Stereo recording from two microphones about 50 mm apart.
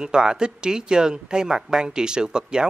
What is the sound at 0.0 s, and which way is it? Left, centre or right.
Speech, centre.